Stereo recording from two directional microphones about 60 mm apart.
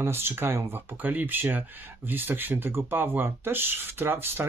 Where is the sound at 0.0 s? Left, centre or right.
Right.